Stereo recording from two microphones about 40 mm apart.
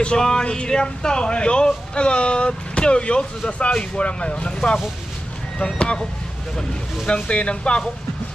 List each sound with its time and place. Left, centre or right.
0.0 s speech: centre
5.8 s speech: left
7.2 s speech: left